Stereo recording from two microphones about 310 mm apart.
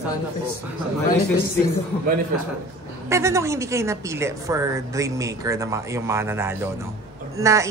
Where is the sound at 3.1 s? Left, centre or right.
Centre.